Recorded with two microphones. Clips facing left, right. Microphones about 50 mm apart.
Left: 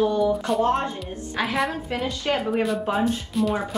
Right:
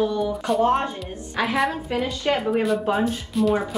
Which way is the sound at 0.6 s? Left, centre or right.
Right.